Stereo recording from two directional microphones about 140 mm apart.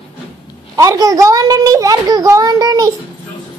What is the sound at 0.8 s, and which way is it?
A child's voice, 25° right (ahead or behind).